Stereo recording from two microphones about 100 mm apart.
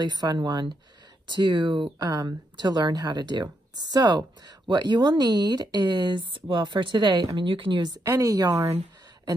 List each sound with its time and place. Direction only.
0.0 s speech: 45° right (ahead or behind)
8.0 s a woman's voice: 35° right (ahead or behind)